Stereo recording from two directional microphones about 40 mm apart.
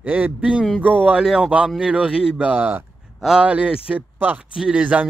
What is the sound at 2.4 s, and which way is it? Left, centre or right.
Speech, right.